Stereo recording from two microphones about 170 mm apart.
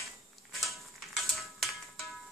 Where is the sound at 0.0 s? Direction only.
Centre (ahead or behind).